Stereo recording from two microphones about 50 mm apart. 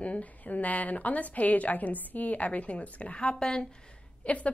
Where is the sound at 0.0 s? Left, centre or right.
Left.